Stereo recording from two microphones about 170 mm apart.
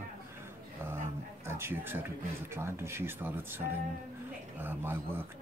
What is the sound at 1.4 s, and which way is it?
Speech, 15° right (ahead or behind).